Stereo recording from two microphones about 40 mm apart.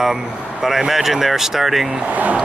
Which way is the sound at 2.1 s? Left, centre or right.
Right.